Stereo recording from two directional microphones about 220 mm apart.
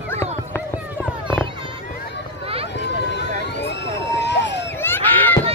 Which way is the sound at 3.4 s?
50° left (ahead or behind).